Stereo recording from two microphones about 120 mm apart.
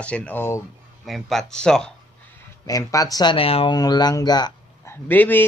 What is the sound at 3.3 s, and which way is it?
Speech, 50° left (ahead or behind).